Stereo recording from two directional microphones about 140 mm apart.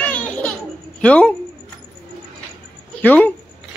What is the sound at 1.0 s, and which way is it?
Speech, 10° left (ahead or behind).